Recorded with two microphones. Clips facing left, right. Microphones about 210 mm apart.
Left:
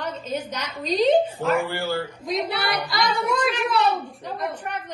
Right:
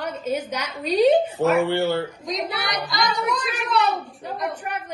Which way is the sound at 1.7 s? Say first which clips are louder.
Right 5 dB; 25° right (ahead or behind).